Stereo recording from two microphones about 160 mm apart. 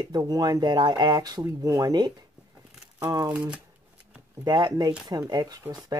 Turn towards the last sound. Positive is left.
turn(degrees=-20)  # may be behind; listen again after turning